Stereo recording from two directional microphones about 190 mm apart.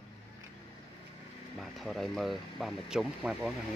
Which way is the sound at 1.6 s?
Centre (ahead or behind).